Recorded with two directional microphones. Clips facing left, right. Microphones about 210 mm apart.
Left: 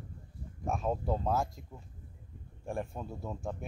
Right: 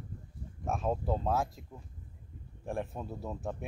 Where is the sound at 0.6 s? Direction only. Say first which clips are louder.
Even; centre (ahead or behind).